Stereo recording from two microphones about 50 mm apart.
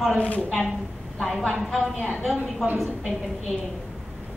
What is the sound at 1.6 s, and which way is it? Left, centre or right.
Speech, centre.